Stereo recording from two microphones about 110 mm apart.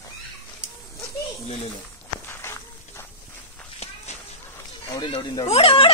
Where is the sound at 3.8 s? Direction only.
70° left (ahead or behind).